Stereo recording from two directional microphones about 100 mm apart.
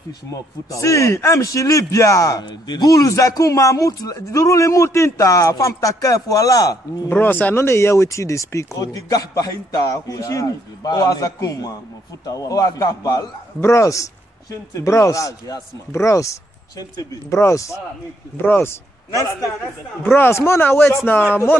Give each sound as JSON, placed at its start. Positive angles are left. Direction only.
{"t": 0.3, "sound": "speech", "side_deg": 30}
{"t": 7.1, "sound": "speech", "side_deg": 20}
{"t": 18.4, "sound": "a man's voice", "side_deg": 20}